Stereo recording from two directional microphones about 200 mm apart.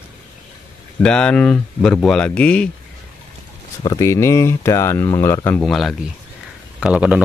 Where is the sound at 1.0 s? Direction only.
5° left (ahead or behind).